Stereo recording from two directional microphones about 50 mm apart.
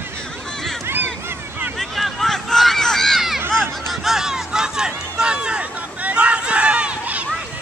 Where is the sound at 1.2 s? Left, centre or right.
Right.